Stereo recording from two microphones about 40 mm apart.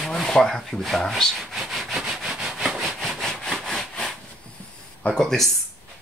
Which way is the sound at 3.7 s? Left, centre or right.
Centre.